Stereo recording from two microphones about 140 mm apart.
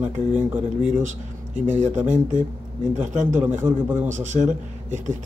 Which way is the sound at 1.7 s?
60° right (ahead or behind).